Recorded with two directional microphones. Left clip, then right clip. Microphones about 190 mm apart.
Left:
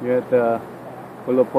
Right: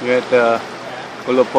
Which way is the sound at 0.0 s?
10° right (ahead or behind).